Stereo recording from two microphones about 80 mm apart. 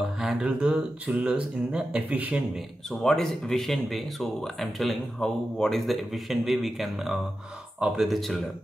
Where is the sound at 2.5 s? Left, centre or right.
Centre.